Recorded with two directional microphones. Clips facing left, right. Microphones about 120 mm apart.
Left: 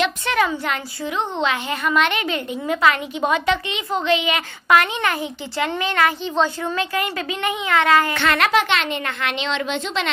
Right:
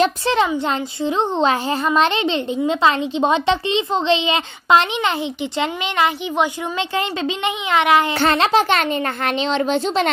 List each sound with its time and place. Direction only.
0.0 s a woman's voice: 30° right (ahead or behind)
8.1 s speech: 30° right (ahead or behind)